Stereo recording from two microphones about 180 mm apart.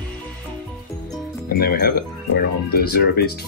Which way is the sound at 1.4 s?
60° left (ahead or behind).